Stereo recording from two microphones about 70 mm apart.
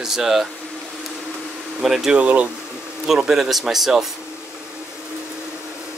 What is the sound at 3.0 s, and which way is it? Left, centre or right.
Speech, centre.